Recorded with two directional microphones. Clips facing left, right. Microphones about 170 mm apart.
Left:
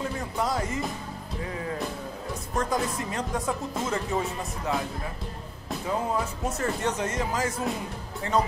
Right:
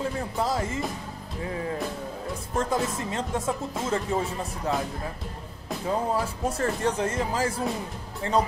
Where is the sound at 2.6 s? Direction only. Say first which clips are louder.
Right 1 dB; 25° right (ahead or behind).